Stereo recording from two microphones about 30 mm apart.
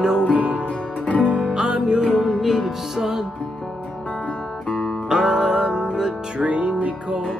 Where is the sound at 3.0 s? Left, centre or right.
Centre.